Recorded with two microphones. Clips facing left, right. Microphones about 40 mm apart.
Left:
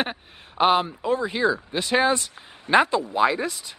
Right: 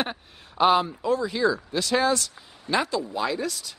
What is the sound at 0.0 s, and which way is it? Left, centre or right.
Speech, centre.